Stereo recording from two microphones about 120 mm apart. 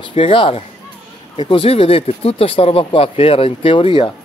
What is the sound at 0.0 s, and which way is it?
Speech, 50° left (ahead or behind).